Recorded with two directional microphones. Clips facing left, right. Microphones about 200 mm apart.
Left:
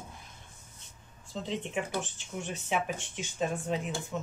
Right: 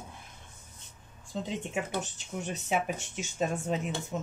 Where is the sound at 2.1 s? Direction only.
40° right (ahead or behind).